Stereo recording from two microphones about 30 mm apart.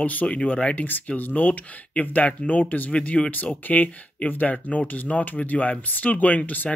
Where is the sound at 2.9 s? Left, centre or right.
Left.